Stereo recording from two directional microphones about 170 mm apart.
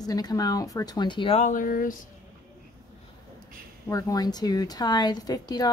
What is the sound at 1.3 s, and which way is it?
Speech, 50° left (ahead or behind).